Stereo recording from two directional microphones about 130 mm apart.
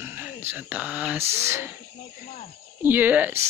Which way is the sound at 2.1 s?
85° left.